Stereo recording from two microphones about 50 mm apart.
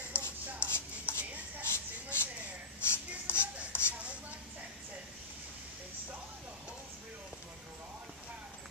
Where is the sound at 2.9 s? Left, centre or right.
Left.